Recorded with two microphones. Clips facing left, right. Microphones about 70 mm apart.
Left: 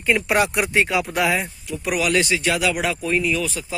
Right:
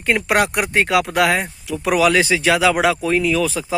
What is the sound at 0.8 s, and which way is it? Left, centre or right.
Speech, right.